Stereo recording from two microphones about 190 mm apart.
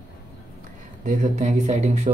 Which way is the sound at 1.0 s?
40° right (ahead or behind).